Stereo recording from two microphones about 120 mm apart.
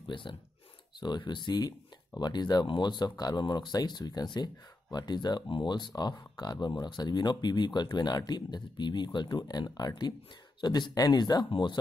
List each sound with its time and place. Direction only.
0.1 s speech: 45° left (ahead or behind)